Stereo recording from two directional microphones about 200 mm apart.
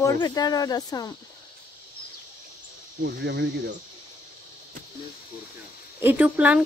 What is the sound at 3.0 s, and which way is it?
Speech, 60° right (ahead or behind).